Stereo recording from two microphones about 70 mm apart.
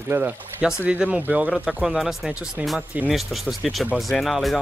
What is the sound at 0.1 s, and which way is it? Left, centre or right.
Speech, right.